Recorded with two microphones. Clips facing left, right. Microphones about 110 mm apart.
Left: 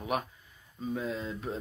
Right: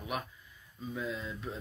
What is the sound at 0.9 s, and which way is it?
Speech, 35° left (ahead or behind).